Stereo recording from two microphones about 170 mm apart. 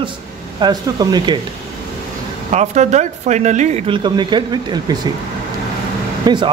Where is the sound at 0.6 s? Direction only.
25° right (ahead or behind).